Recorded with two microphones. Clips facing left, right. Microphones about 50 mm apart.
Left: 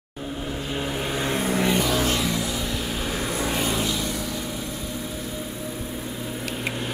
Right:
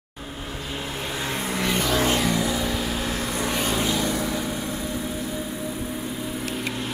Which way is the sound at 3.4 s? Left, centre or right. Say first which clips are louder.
Right 1 dB; centre.